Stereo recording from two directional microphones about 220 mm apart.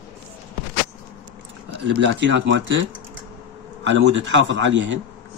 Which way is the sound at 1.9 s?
55° right (ahead or behind).